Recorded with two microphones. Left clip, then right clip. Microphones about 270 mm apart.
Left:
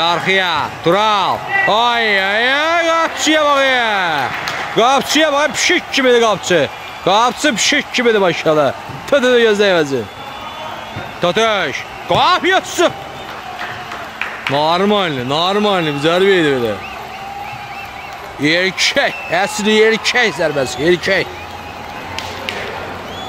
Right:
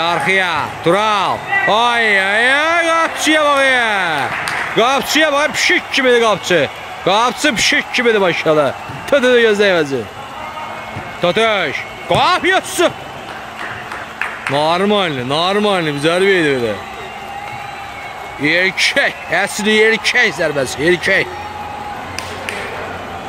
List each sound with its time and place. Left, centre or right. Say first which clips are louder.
0.0 s a man's voice: even; centre
11.1 s a man's voice: even; centre
14.5 s a man's voice: left 1 dB; centre
18.4 s a man's voice: right 1 dB; centre